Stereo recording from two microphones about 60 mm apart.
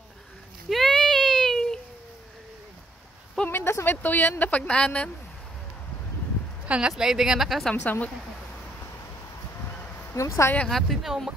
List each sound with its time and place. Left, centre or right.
0.7 s a sound: centre
3.4 s a sound: left
3.8 s speech: left
4.6 s speech: centre
6.6 s speech: centre
7.0 s speech: centre
7.7 s speech: left
10.1 s speech: left
10.7 s speech: centre